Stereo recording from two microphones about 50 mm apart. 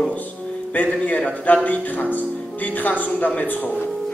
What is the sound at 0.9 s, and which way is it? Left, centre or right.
A man's voice, left.